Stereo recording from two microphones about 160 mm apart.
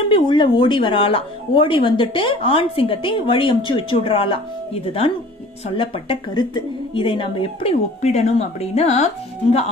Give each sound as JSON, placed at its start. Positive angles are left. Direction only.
{"t": 0.1, "sound": "a woman's voice", "side_deg": 30}
{"t": 5.8, "sound": "a woman's voice", "side_deg": 30}